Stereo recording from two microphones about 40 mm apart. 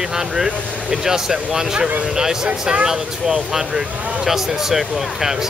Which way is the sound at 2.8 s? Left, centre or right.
Centre.